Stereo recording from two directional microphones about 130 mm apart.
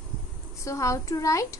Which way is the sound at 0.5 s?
25° left (ahead or behind).